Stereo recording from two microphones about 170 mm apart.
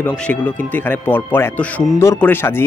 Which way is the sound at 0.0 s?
5° left (ahead or behind).